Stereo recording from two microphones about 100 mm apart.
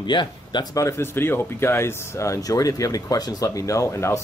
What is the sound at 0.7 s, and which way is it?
Speech, 30° left (ahead or behind).